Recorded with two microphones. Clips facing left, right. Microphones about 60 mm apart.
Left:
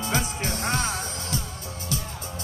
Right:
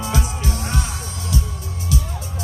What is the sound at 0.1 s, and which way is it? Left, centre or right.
Music, left.